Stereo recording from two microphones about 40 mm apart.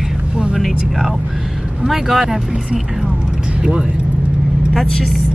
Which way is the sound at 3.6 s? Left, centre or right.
Centre.